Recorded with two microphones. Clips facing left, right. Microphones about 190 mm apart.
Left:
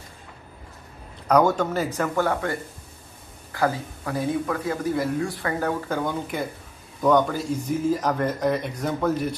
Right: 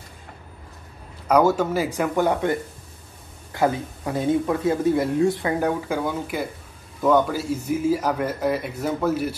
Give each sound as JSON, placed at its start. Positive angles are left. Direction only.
{"t": 1.2, "sound": "speech", "side_deg": -10}
{"t": 3.5, "sound": "speech", "side_deg": -20}